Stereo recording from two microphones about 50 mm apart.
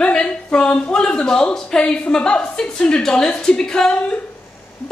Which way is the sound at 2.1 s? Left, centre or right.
Centre.